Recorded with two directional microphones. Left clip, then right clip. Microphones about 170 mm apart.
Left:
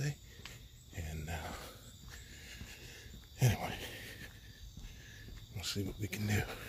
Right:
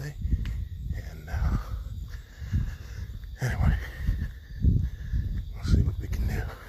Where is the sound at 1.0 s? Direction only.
15° left (ahead or behind).